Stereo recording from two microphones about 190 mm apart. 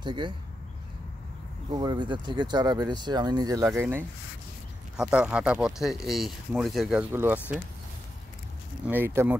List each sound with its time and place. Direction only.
0.0 s speech: 25° right (ahead or behind)
1.7 s speech: 20° right (ahead or behind)
8.8 s speech: 10° right (ahead or behind)